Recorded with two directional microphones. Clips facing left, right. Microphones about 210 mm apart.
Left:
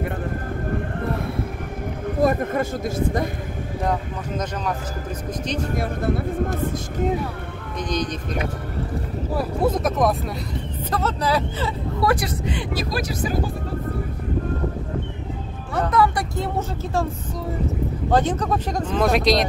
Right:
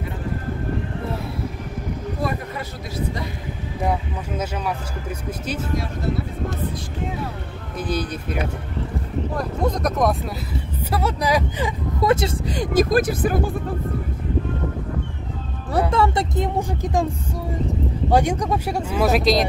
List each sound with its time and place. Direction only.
2.0 s speech: 50° left (ahead or behind)
3.8 s speech: 10° right (ahead or behind)
5.8 s speech: 55° left (ahead or behind)
7.7 s speech: 5° right (ahead or behind)
9.3 s speech: 5° left (ahead or behind)
10.9 s speech: 10° right (ahead or behind)
12.4 s speech: 45° right (ahead or behind)
15.9 s speech: 25° right (ahead or behind)
18.1 s speech: 15° right (ahead or behind)